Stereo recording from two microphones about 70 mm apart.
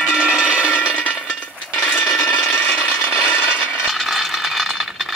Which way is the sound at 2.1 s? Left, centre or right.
Centre.